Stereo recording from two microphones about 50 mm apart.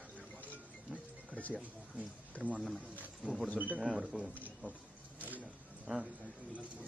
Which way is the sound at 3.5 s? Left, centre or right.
Right.